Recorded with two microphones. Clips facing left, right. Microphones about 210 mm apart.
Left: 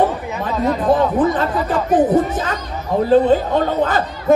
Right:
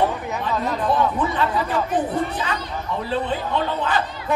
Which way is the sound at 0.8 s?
45° left (ahead or behind).